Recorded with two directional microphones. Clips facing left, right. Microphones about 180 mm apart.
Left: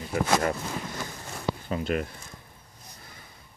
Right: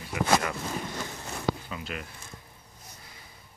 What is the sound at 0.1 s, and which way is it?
Speech, 40° left (ahead or behind).